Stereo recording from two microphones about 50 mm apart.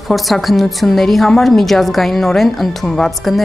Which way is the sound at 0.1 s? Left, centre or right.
Centre.